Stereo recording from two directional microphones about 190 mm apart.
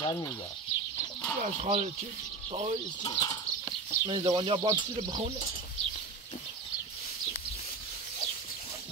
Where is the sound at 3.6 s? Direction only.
25° right (ahead or behind).